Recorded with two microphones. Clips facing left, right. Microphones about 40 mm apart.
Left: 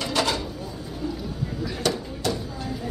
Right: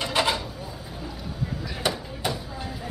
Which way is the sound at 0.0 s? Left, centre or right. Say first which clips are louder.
Even; centre.